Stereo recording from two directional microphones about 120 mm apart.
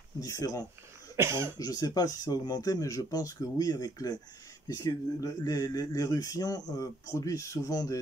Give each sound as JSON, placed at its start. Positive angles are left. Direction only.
{"t": 0.2, "sound": "speech", "side_deg": 30}
{"t": 1.1, "sound": "speech", "side_deg": -20}
{"t": 1.6, "sound": "speech", "side_deg": 30}